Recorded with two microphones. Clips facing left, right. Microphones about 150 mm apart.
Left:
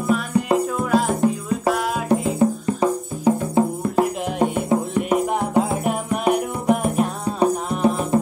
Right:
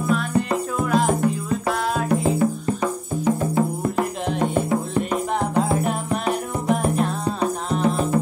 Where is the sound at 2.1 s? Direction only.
25° left (ahead or behind).